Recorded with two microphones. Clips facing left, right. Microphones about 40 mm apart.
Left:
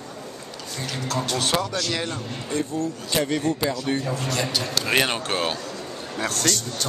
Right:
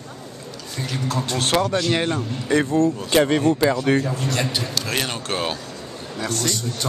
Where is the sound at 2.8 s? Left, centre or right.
Right.